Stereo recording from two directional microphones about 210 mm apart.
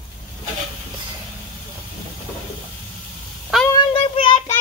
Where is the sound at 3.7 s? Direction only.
25° left (ahead or behind).